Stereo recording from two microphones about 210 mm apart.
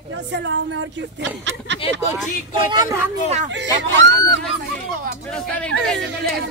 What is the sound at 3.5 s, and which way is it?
Speech, 55° right (ahead or behind).